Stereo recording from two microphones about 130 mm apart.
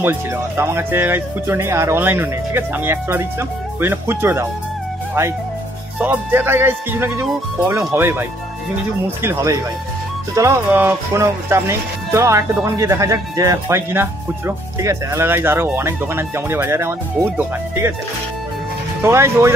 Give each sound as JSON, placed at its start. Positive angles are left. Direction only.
{"t": 0.6, "sound": "speech", "side_deg": -20}
{"t": 5.9, "sound": "speech", "side_deg": -15}
{"t": 10.7, "sound": "speech", "side_deg": -15}
{"t": 19.0, "sound": "speech", "side_deg": -20}